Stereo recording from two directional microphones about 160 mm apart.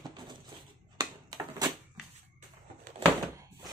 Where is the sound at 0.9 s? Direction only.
25° right (ahead or behind).